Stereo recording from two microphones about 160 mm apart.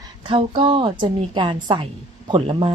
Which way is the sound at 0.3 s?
35° right (ahead or behind).